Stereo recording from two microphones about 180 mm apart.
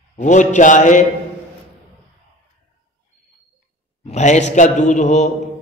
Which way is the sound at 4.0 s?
40° left (ahead or behind).